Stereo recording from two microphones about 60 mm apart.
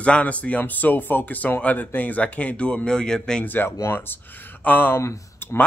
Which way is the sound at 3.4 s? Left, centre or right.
Left.